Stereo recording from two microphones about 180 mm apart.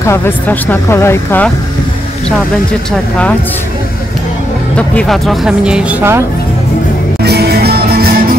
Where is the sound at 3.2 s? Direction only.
10° left (ahead or behind).